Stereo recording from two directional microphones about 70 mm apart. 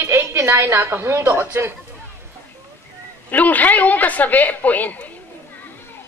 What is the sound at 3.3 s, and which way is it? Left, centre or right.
A woman's voice, left.